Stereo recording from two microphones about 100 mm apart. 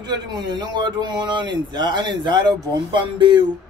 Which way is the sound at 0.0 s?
45° right (ahead or behind).